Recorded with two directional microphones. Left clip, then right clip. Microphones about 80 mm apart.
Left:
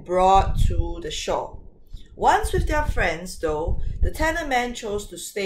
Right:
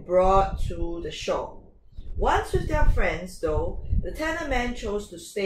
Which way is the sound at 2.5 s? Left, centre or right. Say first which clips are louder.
Left 3 dB; left.